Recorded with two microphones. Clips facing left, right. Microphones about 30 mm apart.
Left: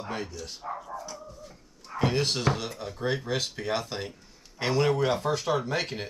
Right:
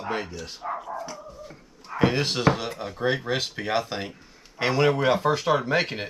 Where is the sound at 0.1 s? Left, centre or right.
Right.